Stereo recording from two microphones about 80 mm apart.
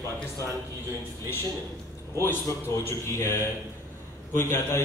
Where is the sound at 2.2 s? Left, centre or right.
Left.